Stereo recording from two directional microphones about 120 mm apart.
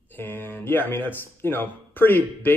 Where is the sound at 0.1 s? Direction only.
15° left (ahead or behind).